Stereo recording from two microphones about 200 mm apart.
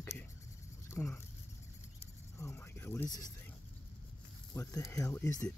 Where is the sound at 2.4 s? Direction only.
15° left (ahead or behind).